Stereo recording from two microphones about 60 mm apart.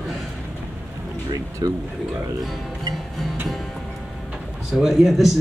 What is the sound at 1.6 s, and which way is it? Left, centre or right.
Speech, right.